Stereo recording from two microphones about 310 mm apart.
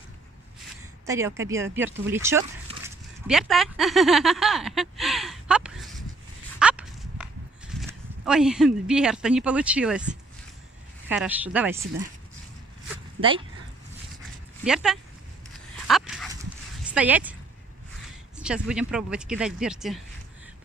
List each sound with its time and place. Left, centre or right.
1.0 s speech: centre
6.6 s walk: centre
8.3 s speech: centre
14.6 s speech: centre
15.9 s dog: centre
16.9 s speech: centre
18.4 s speech: centre